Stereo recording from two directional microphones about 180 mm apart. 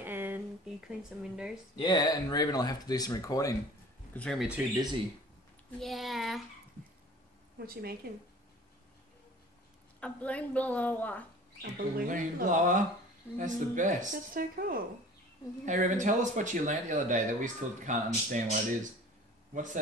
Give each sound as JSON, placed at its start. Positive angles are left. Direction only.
{"t": 0.0, "sound": "a sound", "side_deg": -10}
{"t": 1.8, "sound": "speech", "side_deg": 25}
{"t": 4.1, "sound": "speech", "side_deg": 5}
{"t": 5.8, "sound": "speech", "side_deg": 0}
{"t": 7.5, "sound": "speech", "side_deg": -60}
{"t": 9.9, "sound": "a woman's voice", "side_deg": 5}
{"t": 11.6, "sound": "speech", "side_deg": -55}
{"t": 19.5, "sound": "speech", "side_deg": -45}